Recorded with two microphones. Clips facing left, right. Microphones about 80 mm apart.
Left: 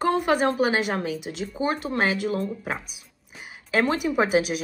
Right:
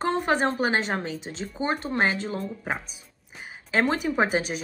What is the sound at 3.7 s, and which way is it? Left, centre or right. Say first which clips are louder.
Speech: left 1 dB; right.